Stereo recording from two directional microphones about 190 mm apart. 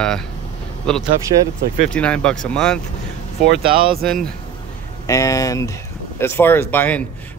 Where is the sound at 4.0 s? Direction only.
5° left (ahead or behind).